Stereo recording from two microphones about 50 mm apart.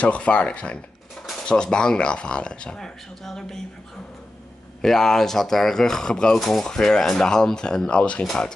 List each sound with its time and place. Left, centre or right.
0.0 s speech: left; by 3.5 s centre
4.8 s speech: centre